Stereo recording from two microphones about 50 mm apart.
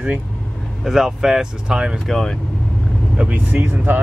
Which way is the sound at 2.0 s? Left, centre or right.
Centre.